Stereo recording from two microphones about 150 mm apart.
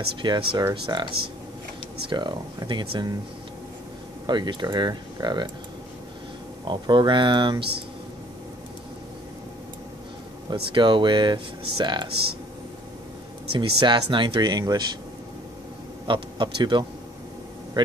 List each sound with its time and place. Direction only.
0.1 s speech: 35° right (ahead or behind)
2.0 s speech: 30° right (ahead or behind)
4.3 s speech: 30° right (ahead or behind)
6.7 s speech: 30° right (ahead or behind)
10.5 s speech: 30° right (ahead or behind)
12.1 s speech: 90° right
13.5 s speech: 30° right (ahead or behind)
16.1 s a man's voice: 30° right (ahead or behind)